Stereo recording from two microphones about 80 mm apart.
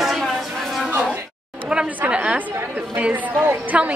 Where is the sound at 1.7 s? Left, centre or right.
Centre.